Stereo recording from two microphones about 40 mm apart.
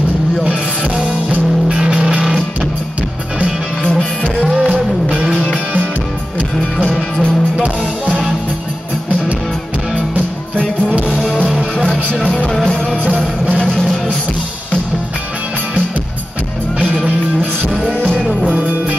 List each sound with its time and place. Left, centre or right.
0.4 s vehicle: right
1.7 s music: right
4.6 s music: right
13.6 s music: centre
16.8 s music: right
17.9 s music: left
18.5 s music: right